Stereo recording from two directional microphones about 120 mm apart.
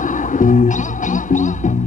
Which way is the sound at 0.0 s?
90° left.